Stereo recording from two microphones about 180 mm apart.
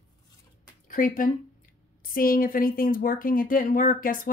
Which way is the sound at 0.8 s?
50° left (ahead or behind).